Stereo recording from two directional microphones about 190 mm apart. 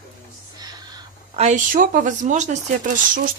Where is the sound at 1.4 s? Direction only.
40° right (ahead or behind).